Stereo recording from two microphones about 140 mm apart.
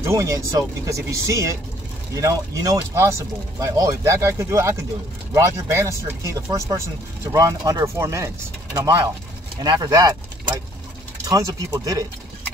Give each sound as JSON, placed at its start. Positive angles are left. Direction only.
{"t": 0.1, "sound": "speech", "side_deg": -25}